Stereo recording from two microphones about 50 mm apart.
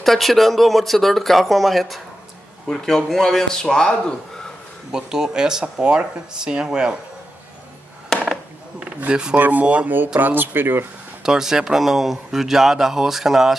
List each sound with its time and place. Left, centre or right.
0.0 s speech: centre
4.9 s a man's voice: centre
9.1 s a man's voice: centre
9.4 s speech: right
9.9 s speech: right
11.2 s a man's voice: centre